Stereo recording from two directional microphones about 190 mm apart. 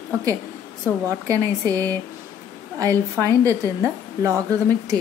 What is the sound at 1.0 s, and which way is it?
Speech, 15° right (ahead or behind).